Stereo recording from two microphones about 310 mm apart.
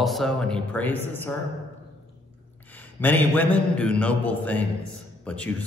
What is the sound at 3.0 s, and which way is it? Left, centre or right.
A man's voice, centre.